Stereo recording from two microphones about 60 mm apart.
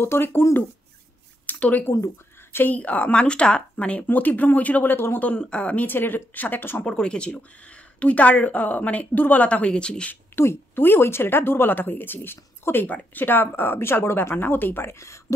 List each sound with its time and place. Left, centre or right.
0.0 s a woman's voice: left
1.4 s a sound: left
2.5 s speech: left
4.9 s a woman's voice: left
5.2 s speech: left
5.9 s a woman's voice: left
6.8 s speech: centre
10.3 s a woman's voice: left